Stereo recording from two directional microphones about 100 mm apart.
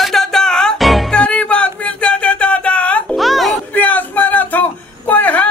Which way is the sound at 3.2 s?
Centre (ahead or behind).